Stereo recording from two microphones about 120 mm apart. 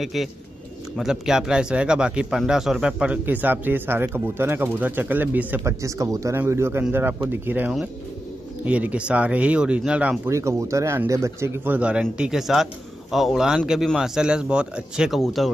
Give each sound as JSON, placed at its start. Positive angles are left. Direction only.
{"t": 0.0, "sound": "speech", "side_deg": 0}
{"t": 10.3, "sound": "speech", "side_deg": -25}